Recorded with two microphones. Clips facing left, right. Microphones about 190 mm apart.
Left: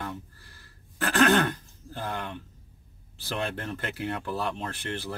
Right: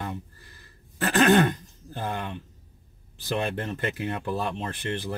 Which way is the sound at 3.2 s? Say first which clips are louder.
Right 4 dB; 15° right (ahead or behind).